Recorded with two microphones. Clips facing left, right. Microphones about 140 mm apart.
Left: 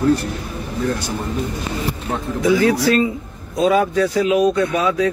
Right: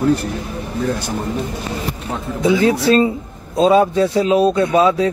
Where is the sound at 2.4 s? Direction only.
25° right (ahead or behind).